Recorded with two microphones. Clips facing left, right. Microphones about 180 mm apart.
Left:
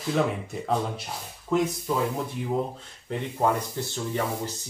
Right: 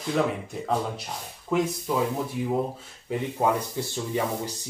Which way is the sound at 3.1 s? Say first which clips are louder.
Right 1 dB; 10° right (ahead or behind).